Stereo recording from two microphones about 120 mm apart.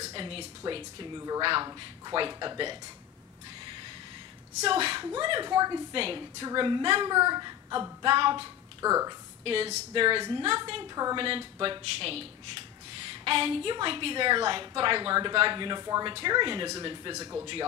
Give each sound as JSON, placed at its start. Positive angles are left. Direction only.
{"t": 0.1, "sound": "speech", "side_deg": -50}
{"t": 4.6, "sound": "a woman's voice", "side_deg": -50}
{"t": 5.9, "sound": "a woman's voice", "side_deg": -50}
{"t": 8.8, "sound": "a woman's voice", "side_deg": -25}
{"t": 9.4, "sound": "a woman's voice", "side_deg": -55}
{"t": 11.1, "sound": "a woman's voice", "side_deg": -50}
{"t": 17.1, "sound": "a woman's voice", "side_deg": -25}